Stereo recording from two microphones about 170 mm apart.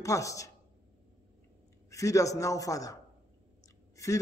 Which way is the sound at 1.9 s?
20° left (ahead or behind).